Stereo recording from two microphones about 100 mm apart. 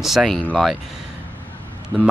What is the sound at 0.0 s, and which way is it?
Speech, centre (ahead or behind).